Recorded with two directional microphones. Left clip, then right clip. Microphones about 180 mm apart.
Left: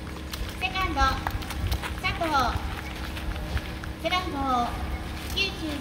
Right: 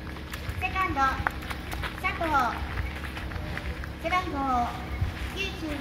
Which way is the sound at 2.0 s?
45° left (ahead or behind).